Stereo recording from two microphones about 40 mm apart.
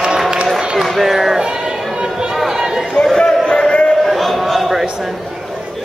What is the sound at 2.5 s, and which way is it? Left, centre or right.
Run, centre.